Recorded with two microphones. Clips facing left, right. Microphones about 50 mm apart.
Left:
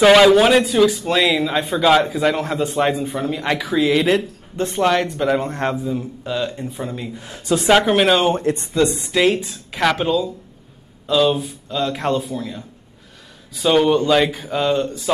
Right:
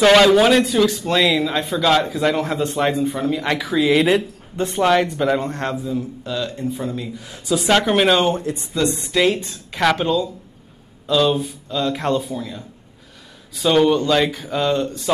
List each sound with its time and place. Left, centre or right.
0.0 s a man's voice: centre
5.4 s speech: centre
7.2 s speech: left
7.6 s a man's voice: centre
8.4 s speech: left
8.9 s a man's voice: centre